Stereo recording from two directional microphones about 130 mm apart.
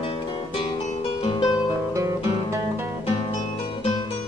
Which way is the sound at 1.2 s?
40° left (ahead or behind).